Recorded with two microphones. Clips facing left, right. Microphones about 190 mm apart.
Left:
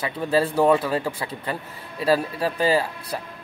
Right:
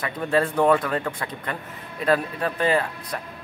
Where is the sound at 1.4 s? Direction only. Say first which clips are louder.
Left 2 dB; 30° left (ahead or behind).